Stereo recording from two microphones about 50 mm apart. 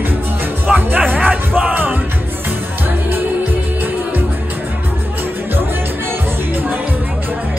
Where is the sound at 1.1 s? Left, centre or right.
Right.